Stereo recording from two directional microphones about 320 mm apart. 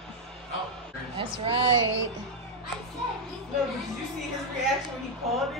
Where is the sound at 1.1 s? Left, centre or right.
Centre.